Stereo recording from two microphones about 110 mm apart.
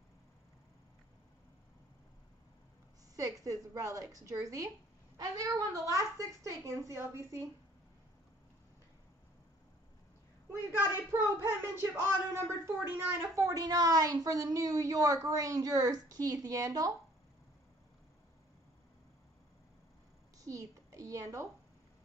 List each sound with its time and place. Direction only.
3.2 s a woman's voice: 30° right (ahead or behind)
11.1 s a woman's voice: 25° right (ahead or behind)
13.5 s a woman's voice: 35° right (ahead or behind)
20.3 s a sound: 30° right (ahead or behind)